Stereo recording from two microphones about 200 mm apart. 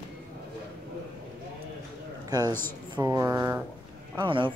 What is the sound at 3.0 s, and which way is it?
Speech, 15° right (ahead or behind).